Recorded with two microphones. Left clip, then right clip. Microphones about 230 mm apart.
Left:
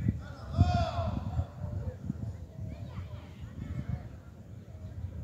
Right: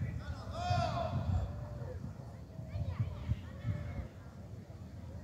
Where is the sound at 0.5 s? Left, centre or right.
Centre.